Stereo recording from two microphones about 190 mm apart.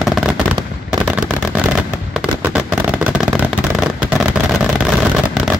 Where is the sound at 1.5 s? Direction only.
5° right (ahead or behind).